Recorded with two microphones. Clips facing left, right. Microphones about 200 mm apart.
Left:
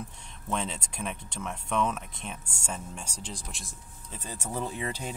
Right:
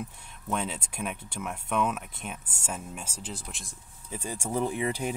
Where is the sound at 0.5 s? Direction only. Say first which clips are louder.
Right 1 dB; 5° right (ahead or behind).